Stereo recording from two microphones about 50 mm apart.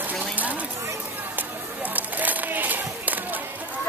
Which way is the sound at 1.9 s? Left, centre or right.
Right.